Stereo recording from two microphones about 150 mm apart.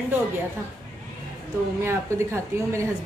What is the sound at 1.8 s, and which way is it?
A woman's voice, 20° right (ahead or behind).